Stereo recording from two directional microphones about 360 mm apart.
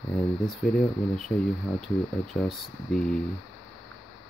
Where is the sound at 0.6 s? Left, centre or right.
Centre.